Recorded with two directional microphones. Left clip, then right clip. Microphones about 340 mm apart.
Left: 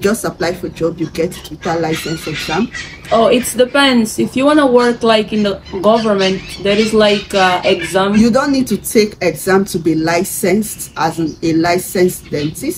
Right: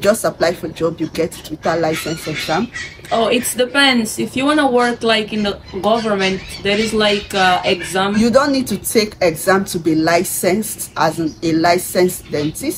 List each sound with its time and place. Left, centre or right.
0.0 s speech: centre
3.1 s speech: centre